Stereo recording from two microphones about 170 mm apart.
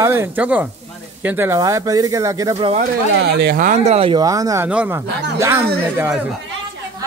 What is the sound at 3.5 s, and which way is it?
Speech, 50° right (ahead or behind).